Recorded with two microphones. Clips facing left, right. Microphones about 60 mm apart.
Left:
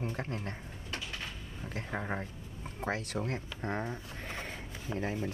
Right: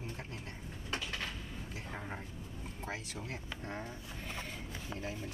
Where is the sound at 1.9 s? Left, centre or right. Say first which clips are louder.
Left 8 dB; left.